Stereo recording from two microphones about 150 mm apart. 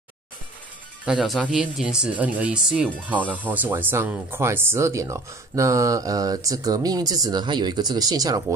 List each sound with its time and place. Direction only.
1.0 s speech: 5° right (ahead or behind); by 8.5 s 25° right (ahead or behind)